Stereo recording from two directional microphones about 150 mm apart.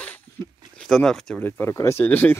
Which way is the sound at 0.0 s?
10° left (ahead or behind).